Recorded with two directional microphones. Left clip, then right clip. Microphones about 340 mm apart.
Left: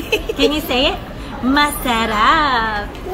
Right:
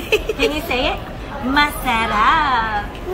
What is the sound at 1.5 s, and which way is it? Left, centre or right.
A woman's voice, centre.